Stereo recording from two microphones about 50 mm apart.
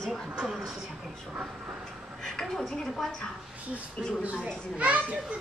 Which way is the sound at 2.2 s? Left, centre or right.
Centre.